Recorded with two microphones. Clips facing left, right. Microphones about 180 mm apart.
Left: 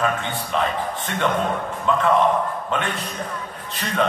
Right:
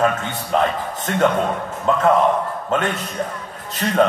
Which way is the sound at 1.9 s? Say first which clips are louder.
Right 2 dB; 40° right (ahead or behind).